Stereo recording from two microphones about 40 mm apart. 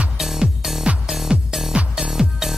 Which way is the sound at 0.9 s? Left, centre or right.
Right.